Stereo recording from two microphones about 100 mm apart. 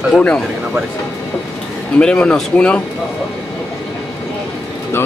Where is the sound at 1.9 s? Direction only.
10° left (ahead or behind).